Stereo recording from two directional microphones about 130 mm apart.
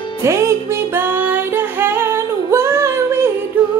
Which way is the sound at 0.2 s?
20° right (ahead or behind).